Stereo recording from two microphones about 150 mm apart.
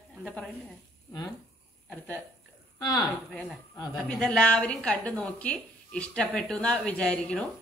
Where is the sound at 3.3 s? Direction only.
Centre (ahead or behind).